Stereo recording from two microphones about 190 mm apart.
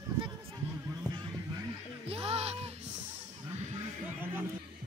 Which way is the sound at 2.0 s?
30° right (ahead or behind).